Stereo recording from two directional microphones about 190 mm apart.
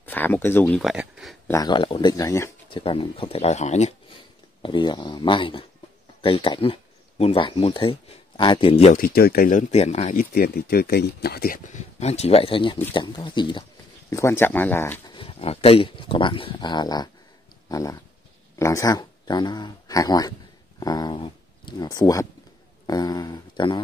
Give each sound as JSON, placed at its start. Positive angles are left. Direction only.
{"t": 0.0, "sound": "speech", "side_deg": 10}
{"t": 0.7, "sound": "speech", "side_deg": 0}
{"t": 1.5, "sound": "speech", "side_deg": 20}
{"t": 2.7, "sound": "speech", "side_deg": 25}
{"t": 4.6, "sound": "speech", "side_deg": 25}
{"t": 8.9, "sound": "speech", "side_deg": 50}
{"t": 10.3, "sound": "speech", "side_deg": 55}
{"t": 14.1, "sound": "speech", "side_deg": 15}
{"t": 15.0, "sound": "speech", "side_deg": 30}
{"t": 17.6, "sound": "a sound", "side_deg": 20}
{"t": 18.6, "sound": "speech", "side_deg": 15}